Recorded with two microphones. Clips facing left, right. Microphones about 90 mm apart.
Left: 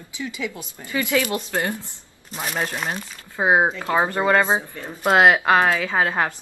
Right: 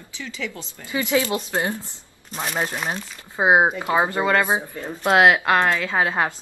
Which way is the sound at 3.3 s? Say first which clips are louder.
Right 1 dB; 20° right (ahead or behind).